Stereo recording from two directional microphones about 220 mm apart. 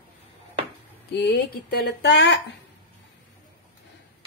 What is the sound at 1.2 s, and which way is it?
Speech, 50° left (ahead or behind).